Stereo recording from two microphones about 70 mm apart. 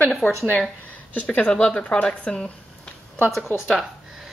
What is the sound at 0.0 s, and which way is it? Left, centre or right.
Speech, centre.